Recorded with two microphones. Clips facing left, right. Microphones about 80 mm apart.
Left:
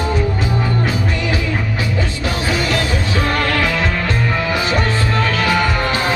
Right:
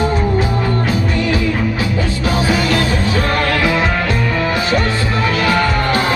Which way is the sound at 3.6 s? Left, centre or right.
Right.